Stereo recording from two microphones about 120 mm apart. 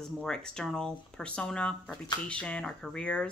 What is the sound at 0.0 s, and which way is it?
Speech, 5° left (ahead or behind).